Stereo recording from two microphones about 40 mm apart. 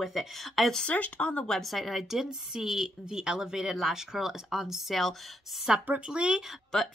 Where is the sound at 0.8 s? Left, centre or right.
Left.